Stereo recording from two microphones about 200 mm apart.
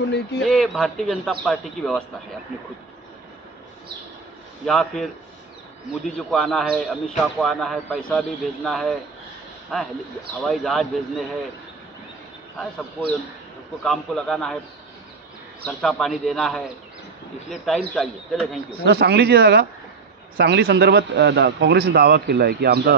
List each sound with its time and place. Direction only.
0.4 s a man's voice: centre (ahead or behind)
4.6 s a man's voice: centre (ahead or behind)
6.1 s a man's voice: centre (ahead or behind)
13.8 s a man's voice: centre (ahead or behind)
15.6 s a man's voice: 5° left (ahead or behind)
18.9 s a man's voice: 55° right (ahead or behind)